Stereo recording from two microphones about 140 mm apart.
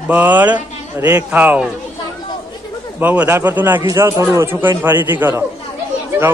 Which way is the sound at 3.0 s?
10° right (ahead or behind).